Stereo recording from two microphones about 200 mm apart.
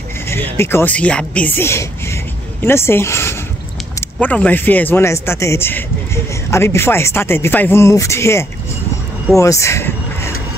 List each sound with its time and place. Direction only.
0.3 s speech: 10° left (ahead or behind)